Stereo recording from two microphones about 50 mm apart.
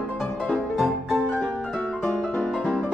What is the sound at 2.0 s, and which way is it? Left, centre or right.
Music, left.